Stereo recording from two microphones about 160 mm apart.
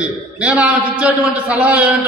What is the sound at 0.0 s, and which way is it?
A man's voice, 5° right (ahead or behind).